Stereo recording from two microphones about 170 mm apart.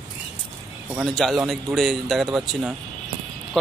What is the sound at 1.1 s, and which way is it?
Speech, centre (ahead or behind).